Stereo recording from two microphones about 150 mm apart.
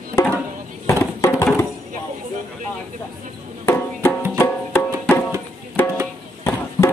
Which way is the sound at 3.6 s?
15° left (ahead or behind).